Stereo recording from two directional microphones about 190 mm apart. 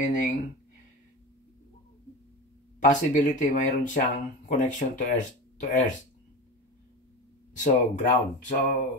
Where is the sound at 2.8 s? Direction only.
40° left (ahead or behind).